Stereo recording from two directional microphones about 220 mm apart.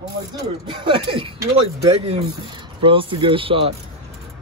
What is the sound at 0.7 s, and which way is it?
Speech, 25° right (ahead or behind).